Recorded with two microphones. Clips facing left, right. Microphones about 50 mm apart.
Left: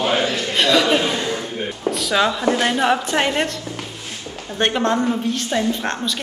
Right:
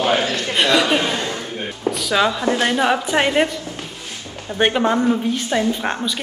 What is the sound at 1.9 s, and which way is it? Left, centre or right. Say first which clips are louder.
A woman's voice: right 1 dB; centre.